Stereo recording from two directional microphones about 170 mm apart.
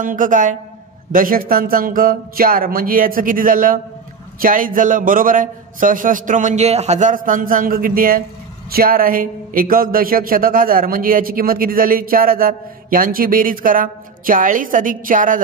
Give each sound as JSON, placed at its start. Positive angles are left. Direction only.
{"t": 0.0, "sound": "a man's voice", "side_deg": -50}